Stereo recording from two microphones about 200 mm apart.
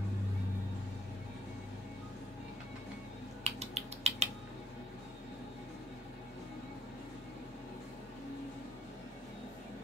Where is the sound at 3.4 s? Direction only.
35° right (ahead or behind).